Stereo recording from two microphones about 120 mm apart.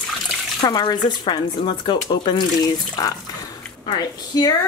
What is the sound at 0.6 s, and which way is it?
Speech, 35° left (ahead or behind).